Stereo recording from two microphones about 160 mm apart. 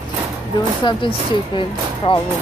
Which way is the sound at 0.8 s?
30° left (ahead or behind).